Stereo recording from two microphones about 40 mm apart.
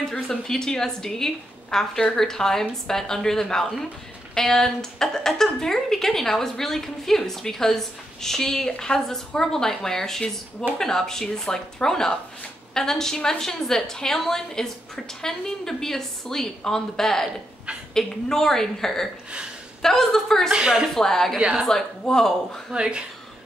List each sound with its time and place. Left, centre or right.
0.1 s speech: centre
20.5 s speech: centre
20.9 s speech: centre
21.4 s speech: right
22.0 s speech: centre
22.7 s speech: right